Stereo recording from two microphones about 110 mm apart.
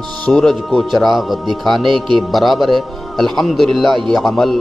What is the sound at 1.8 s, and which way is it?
Speech, 50° right (ahead or behind).